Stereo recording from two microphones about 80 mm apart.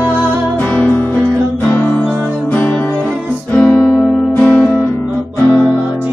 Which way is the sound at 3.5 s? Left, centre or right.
Left.